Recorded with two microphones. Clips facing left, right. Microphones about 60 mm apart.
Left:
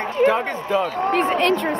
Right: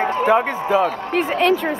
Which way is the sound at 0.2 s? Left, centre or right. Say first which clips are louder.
Left 1 dB; centre.